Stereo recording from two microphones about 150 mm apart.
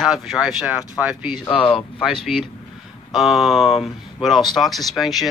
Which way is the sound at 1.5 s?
35° left (ahead or behind).